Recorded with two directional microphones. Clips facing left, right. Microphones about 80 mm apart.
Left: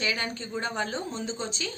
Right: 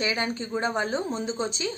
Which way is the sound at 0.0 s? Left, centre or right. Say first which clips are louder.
Right 3 dB; right.